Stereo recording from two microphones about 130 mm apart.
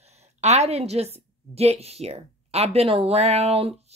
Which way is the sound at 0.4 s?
60° right (ahead or behind).